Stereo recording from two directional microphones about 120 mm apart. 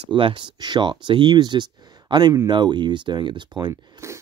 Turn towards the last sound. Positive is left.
turn(degrees=-20)  # may be behind; listen again after turning